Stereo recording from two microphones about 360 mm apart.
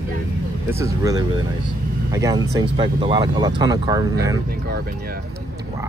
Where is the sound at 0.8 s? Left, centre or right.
Centre.